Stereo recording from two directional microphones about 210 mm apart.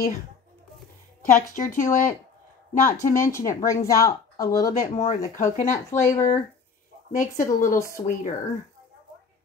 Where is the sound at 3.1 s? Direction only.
15° left (ahead or behind).